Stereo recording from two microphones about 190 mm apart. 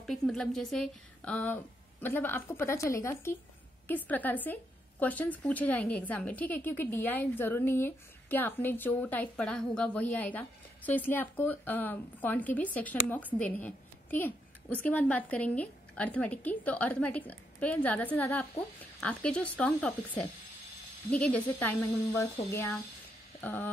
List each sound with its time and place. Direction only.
0.0 s a woman's voice: centre (ahead or behind)
21.1 s a woman's voice: 5° left (ahead or behind)